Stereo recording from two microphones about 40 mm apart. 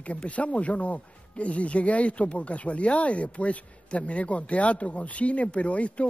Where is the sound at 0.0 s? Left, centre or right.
Left.